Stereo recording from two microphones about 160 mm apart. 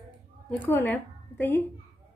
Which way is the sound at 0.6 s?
10° left (ahead or behind).